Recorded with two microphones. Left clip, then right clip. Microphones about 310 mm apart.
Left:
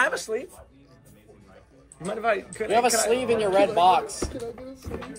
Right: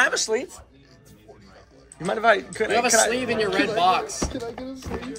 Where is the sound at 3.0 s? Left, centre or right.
Centre.